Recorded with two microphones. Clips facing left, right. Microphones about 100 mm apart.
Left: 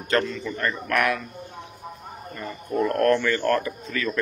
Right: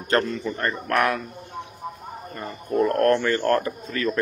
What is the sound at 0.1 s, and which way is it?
Speech, 35° right (ahead or behind).